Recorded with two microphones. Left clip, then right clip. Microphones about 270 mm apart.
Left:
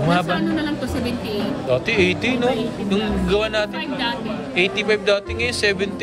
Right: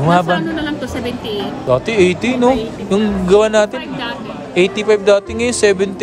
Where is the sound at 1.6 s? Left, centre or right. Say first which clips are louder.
Right 6 dB; centre.